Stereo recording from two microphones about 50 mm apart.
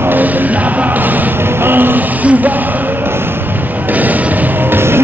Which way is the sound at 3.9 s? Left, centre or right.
Right.